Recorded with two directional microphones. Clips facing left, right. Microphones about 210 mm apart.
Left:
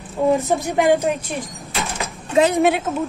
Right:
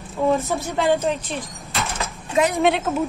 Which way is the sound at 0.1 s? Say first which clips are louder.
Left 3 dB; 15° left (ahead or behind).